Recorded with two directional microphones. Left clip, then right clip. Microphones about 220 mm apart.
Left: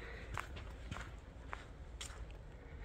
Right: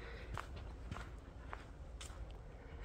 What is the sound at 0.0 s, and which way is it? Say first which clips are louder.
Walk: left 2 dB; 5° right (ahead or behind).